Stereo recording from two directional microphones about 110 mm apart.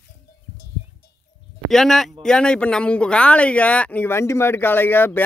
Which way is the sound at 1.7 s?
5° left (ahead or behind).